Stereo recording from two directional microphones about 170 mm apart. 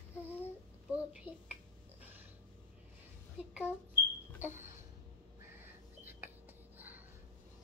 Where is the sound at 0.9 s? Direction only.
5° right (ahead or behind).